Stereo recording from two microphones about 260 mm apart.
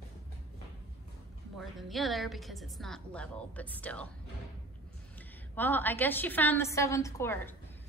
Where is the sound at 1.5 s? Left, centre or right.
Centre.